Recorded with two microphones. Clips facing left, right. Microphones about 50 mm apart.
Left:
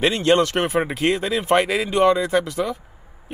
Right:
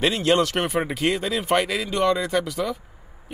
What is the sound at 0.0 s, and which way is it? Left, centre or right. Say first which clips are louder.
Speech: left 3 dB; centre.